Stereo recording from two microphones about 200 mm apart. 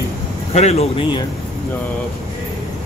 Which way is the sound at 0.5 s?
30° left (ahead or behind).